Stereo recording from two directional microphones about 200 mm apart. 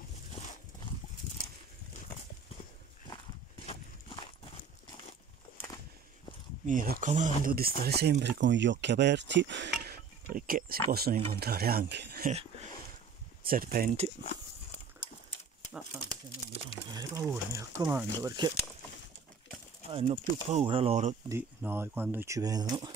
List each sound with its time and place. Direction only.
3.6 s clip-clop: 25° left (ahead or behind)
6.6 s speech: 40° right (ahead or behind); by 9.9 s 60° right (ahead or behind)
10.3 s speech: 45° right (ahead or behind)
13.4 s speech: 45° right (ahead or behind)
14.2 s walk: 35° left (ahead or behind)
16.9 s speech: 15° right (ahead or behind)
19.9 s speech: 30° right (ahead or behind)
21.3 s speech: 10° right (ahead or behind)